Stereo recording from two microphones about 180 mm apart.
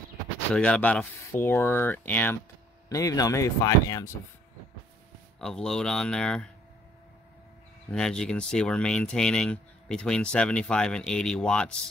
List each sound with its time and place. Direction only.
0.5 s speech: 5° left (ahead or behind)
5.4 s speech: 5° left (ahead or behind)
7.9 s speech: 5° left (ahead or behind)